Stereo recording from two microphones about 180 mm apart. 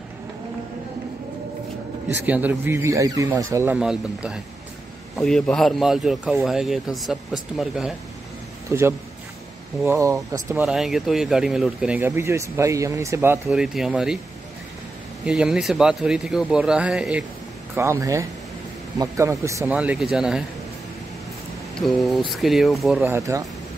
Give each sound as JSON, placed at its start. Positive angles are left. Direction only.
{"t": 2.2, "sound": "speech", "side_deg": -10}
{"t": 3.5, "sound": "speech", "side_deg": -10}
{"t": 8.6, "sound": "a man's voice", "side_deg": -15}
{"t": 10.6, "sound": "speech", "side_deg": -5}
{"t": 15.2, "sound": "speech", "side_deg": -5}
{"t": 17.7, "sound": "speech", "side_deg": -15}
{"t": 21.7, "sound": "speech", "side_deg": 0}